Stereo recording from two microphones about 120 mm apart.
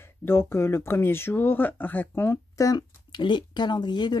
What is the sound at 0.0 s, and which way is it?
Speech, 20° left (ahead or behind).